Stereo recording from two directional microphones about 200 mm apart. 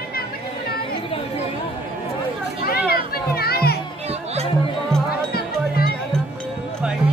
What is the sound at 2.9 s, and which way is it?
Music, 50° left (ahead or behind).